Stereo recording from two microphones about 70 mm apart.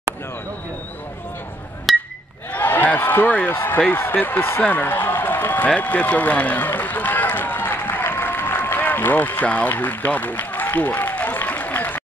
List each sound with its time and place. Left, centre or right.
1.9 s chink: centre
2.5 s a sound: left
3.9 s speech: left
5.8 s run: left